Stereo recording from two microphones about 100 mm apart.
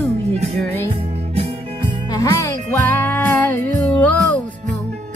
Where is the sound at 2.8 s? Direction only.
20° left (ahead or behind).